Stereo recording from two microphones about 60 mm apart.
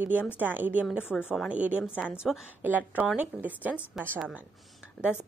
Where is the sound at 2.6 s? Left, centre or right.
Right.